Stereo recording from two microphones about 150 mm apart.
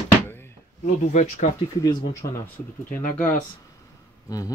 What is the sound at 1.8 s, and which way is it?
Speech, 25° left (ahead or behind).